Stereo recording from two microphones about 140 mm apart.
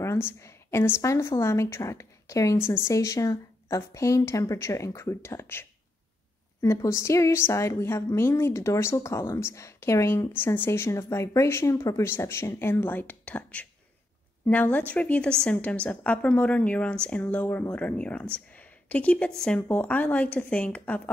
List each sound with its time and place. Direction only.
0.0 s a woman's voice: 20° left (ahead or behind)